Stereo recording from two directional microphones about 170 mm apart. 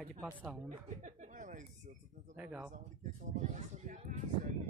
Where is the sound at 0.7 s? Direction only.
45° right (ahead or behind).